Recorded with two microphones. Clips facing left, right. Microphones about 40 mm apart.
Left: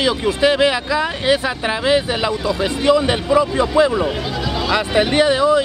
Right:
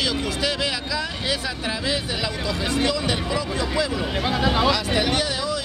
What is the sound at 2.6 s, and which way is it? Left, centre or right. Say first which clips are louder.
Speech: left 8 dB; left.